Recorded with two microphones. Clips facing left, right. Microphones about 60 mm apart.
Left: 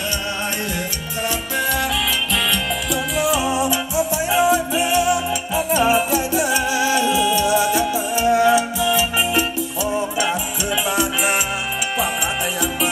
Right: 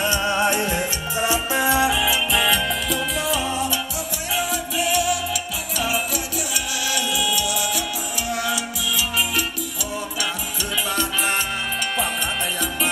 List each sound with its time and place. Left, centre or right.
1.2 s music: centre; by 9.4 s left